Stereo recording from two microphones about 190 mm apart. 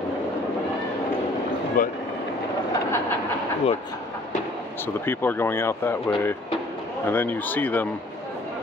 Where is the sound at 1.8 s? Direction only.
50° left (ahead or behind).